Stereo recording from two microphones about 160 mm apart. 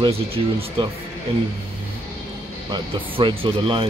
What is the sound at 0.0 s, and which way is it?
Speech, 35° right (ahead or behind).